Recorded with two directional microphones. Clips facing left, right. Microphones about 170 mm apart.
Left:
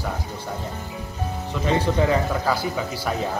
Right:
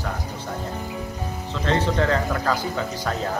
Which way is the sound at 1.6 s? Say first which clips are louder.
Left 1 dB; 10° left (ahead or behind).